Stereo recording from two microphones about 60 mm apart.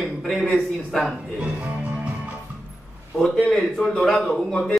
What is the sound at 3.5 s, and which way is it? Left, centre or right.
Speech, centre.